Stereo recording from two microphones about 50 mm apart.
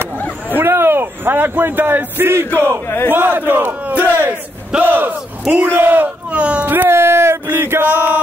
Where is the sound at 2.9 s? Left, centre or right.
Left.